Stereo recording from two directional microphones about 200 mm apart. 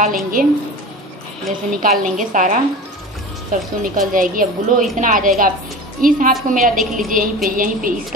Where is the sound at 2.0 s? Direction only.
40° right (ahead or behind).